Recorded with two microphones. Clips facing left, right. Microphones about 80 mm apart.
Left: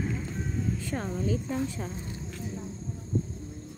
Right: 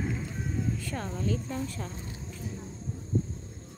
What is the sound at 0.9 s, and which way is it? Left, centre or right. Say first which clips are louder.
Speech: left 4 dB; centre.